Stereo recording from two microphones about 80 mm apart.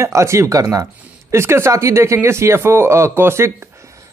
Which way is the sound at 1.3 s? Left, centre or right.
Right.